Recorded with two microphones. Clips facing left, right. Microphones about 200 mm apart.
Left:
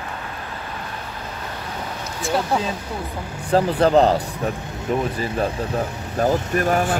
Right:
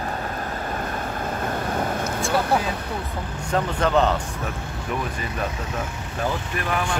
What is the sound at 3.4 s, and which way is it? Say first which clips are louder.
Speech: left 6 dB; 35° left (ahead or behind).